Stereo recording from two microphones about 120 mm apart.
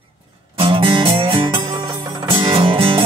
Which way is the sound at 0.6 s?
45° right (ahead or behind).